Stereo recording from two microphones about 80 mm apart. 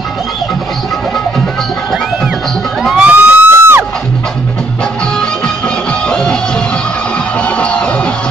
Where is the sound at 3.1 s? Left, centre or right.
Right.